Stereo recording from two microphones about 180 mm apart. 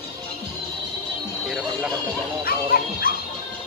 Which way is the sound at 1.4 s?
Centre (ahead or behind).